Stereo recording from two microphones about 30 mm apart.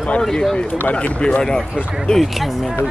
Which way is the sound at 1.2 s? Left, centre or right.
Left.